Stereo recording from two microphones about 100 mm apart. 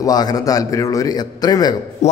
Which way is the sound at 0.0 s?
40° left (ahead or behind).